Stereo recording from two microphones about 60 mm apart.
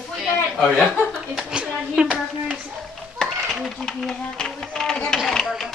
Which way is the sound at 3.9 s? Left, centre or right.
Centre.